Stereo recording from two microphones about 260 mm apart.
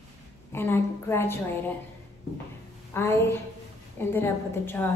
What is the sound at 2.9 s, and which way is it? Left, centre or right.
A woman's voice, centre.